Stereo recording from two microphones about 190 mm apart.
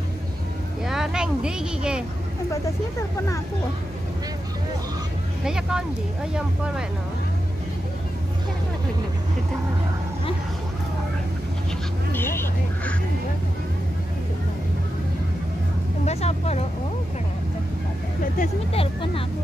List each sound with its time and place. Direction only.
0.8 s speech: centre (ahead or behind)
2.5 s speech: 15° left (ahead or behind)
5.4 s speech: 5° right (ahead or behind)
12.1 s a sound: 10° left (ahead or behind)
16.1 s speech: 35° left (ahead or behind)
18.4 s speech: 30° left (ahead or behind)